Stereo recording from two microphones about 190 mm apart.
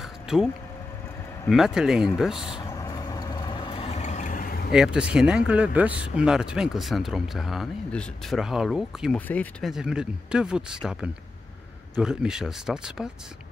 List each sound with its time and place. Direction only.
0.0 s vehicle: centre (ahead or behind)
1.5 s speech: centre (ahead or behind)
2.6 s vehicle: 20° left (ahead or behind); by 4.7 s 50° left (ahead or behind)
4.7 s speech: 5° right (ahead or behind)